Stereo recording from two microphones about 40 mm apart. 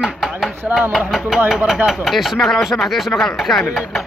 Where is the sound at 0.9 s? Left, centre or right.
Centre.